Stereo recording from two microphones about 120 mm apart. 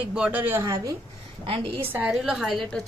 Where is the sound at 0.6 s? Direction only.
30° right (ahead or behind).